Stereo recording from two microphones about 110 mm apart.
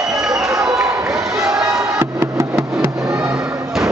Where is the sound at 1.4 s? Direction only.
5° right (ahead or behind).